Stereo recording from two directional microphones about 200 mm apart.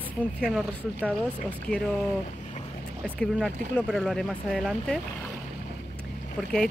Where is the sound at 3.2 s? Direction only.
Centre (ahead or behind).